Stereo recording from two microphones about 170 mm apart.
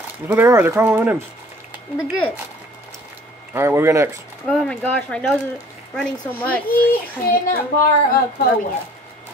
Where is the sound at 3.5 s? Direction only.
15° right (ahead or behind).